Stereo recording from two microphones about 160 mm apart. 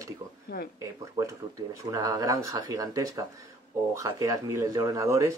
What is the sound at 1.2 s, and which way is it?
Speech, 25° right (ahead or behind).